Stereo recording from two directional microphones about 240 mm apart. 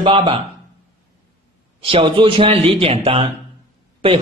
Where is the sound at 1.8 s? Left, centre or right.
Right.